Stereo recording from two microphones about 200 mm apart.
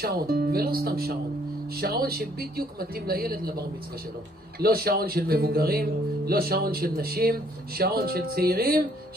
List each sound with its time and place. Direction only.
0.0 s speech: 50° right (ahead or behind)